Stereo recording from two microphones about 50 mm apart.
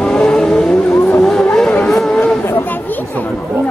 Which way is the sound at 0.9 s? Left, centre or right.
Left.